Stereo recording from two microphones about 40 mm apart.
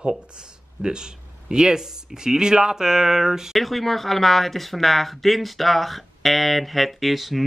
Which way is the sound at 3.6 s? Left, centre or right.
Centre.